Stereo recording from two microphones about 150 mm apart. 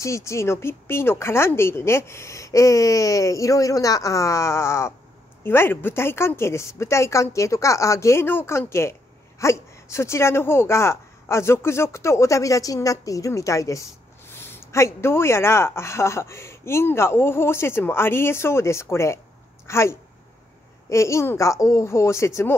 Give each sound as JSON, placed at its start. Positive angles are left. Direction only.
{"t": 0.0, "sound": "speech", "side_deg": 20}